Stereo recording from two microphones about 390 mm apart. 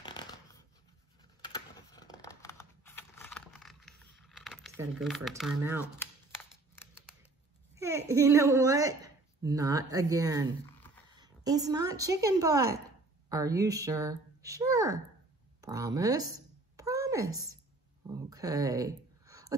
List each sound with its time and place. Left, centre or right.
0.0 s shuffling cards: centre
1.4 s computer keyboard: centre
6.7 s scissors: centre
7.7 s a woman's voice: centre
15.6 s a sound: centre